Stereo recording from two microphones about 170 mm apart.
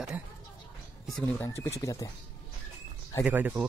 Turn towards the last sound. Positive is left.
turn(degrees=-10)  # may be behind; listen again after turning